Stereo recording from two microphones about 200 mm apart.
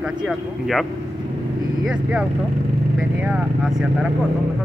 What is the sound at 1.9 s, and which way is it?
Speech, 5° right (ahead or behind).